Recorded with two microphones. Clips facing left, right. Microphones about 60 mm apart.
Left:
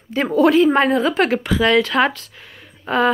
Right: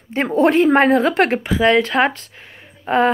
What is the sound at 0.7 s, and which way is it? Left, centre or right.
Speech, right.